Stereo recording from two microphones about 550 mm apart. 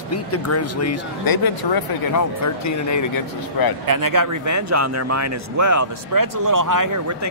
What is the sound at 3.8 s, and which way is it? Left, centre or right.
Speech, right.